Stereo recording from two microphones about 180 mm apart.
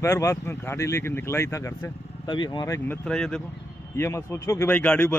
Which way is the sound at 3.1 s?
5° left (ahead or behind).